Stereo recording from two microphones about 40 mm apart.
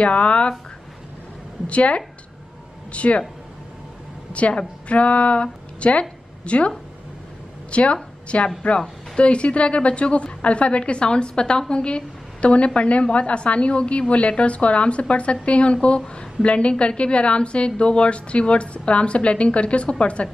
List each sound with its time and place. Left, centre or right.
0.0 s a woman's voice: left
1.7 s a woman's voice: left
4.3 s a woman's voice: left
7.7 s a woman's voice: left